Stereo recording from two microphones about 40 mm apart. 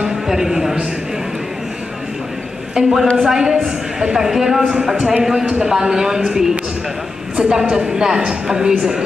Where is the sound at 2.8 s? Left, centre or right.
Centre.